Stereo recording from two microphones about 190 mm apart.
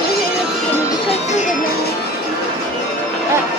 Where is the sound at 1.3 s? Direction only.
40° left (ahead or behind).